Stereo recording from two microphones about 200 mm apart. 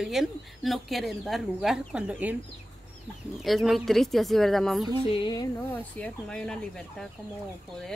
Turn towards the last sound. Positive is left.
turn(degrees=5)  # may be behind; listen again after turning